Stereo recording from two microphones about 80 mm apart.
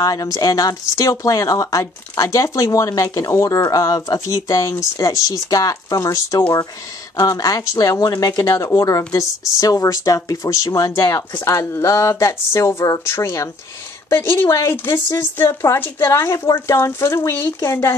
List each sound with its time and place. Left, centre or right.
0.0 s speech: left
11.4 s speech: left
14.5 s speech: left